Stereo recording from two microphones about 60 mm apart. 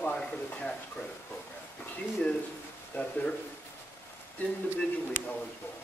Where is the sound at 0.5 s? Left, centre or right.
Left.